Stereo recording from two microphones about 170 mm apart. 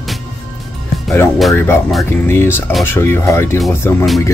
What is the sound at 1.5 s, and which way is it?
Speech, 15° left (ahead or behind).